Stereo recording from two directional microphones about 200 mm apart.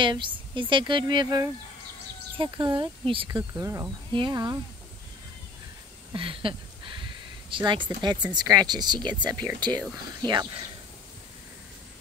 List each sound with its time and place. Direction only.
0.0 s speech: 25° right (ahead or behind)
6.1 s a sound: 25° right (ahead or behind)
7.4 s speech: 25° right (ahead or behind)